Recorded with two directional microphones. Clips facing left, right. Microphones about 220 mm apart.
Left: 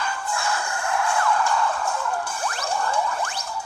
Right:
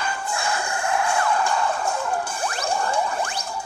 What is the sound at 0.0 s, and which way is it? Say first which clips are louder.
Music: right 1 dB; 15° right (ahead or behind).